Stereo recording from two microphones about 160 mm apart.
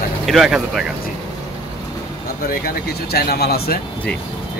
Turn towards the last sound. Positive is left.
turn(degrees=80)